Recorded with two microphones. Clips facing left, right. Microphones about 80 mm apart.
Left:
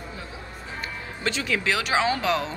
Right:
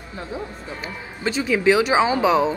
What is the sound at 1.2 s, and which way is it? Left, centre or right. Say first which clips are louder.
Speech: right 7 dB; centre.